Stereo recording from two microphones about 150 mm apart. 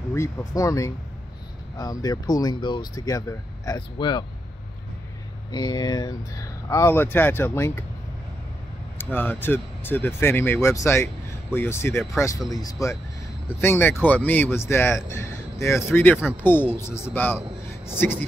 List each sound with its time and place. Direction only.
0.1 s speech: 20° left (ahead or behind)
5.5 s speech: 25° left (ahead or behind)
8.9 s speech: 15° left (ahead or behind)